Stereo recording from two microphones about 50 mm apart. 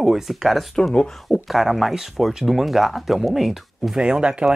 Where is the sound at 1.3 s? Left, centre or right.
Centre.